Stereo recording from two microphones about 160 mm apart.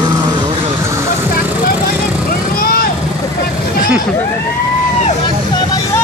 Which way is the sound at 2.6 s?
70° left (ahead or behind).